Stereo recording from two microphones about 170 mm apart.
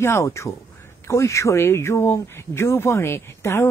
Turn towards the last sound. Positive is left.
turn(degrees=15)  # may be behind; listen again after turning